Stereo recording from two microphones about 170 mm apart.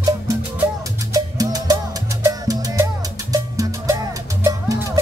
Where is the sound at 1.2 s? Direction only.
20° right (ahead or behind).